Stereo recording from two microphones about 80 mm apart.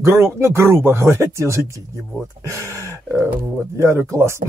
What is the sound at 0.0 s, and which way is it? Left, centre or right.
Speech, right.